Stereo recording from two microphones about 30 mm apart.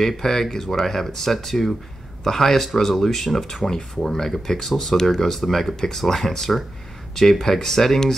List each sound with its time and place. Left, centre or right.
0.2 s speech: centre